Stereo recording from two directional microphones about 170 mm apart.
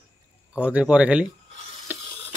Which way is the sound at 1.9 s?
10° right (ahead or behind).